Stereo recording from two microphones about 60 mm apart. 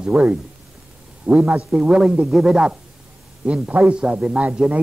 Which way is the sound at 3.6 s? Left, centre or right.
Centre.